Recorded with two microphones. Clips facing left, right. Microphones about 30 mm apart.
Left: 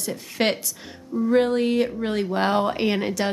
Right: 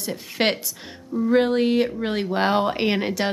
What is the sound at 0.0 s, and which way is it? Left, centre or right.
A woman's voice, centre.